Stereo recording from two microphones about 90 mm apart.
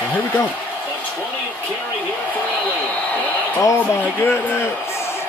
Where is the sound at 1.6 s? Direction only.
20° left (ahead or behind).